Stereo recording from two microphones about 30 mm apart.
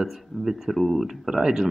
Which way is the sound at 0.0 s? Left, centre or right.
Centre.